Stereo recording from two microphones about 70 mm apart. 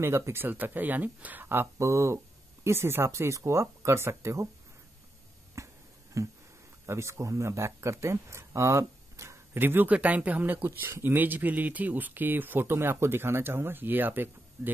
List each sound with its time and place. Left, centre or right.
0.0 s speech: right
1.8 s speech: right
5.6 s finger snapping: right
6.2 s speech: right
9.5 s speech: right